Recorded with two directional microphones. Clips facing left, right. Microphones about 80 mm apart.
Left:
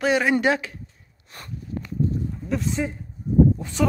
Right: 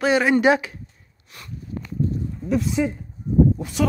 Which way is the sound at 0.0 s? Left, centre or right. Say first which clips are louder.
Right 2 dB; centre.